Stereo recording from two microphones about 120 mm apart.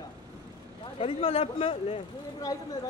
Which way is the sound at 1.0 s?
55° left (ahead or behind).